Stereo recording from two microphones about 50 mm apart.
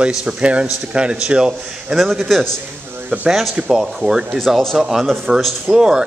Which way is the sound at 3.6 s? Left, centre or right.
Centre.